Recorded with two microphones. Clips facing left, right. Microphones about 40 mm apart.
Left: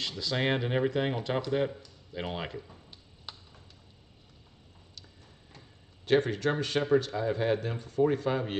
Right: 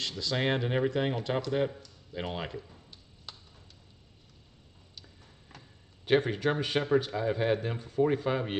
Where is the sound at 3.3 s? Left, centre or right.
Centre.